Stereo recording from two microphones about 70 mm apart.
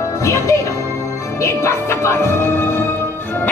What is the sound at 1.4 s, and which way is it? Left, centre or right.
Speech, left.